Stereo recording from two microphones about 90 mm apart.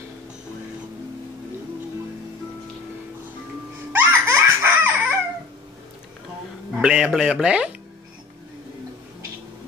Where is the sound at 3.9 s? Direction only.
30° right (ahead or behind).